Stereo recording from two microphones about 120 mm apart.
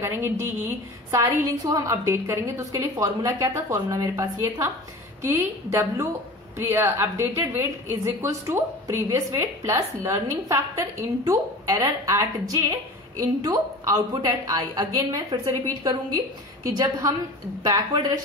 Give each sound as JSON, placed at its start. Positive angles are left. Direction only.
{"t": 0.0, "sound": "a woman's voice", "side_deg": -20}